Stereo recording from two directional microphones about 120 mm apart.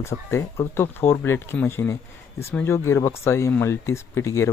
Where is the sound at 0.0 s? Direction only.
20° left (ahead or behind).